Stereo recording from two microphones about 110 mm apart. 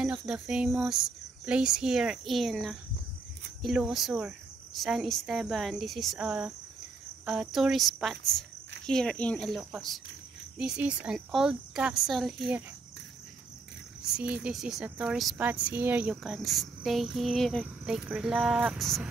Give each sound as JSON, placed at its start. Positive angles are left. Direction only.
{"t": 0.0, "sound": "speech", "side_deg": -10}
{"t": 6.1, "sound": "speech", "side_deg": -10}
{"t": 10.6, "sound": "speech", "side_deg": -10}
{"t": 14.0, "sound": "speech", "side_deg": -10}